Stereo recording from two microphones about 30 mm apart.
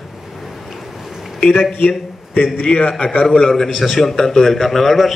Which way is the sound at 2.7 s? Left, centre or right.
Left.